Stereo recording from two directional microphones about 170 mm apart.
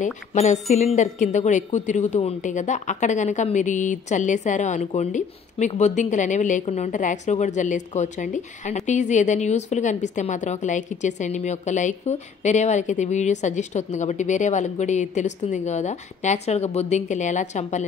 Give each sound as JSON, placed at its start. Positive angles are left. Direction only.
{"t": 0.0, "sound": "a woman's voice", "side_deg": 45}